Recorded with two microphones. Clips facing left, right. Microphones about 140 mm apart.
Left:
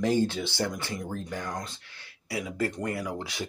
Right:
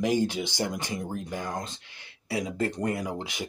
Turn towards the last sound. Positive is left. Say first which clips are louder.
# even
turn(degrees=-20)  # may be behind; listen again after turning